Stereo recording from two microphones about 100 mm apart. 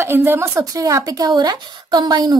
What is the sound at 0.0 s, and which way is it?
Speech, 20° right (ahead or behind).